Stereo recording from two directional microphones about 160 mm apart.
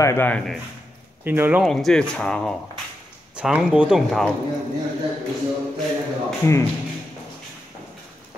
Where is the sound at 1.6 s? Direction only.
Centre (ahead or behind).